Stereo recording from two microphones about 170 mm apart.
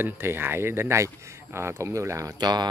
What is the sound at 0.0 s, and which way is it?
Speech, 15° right (ahead or behind).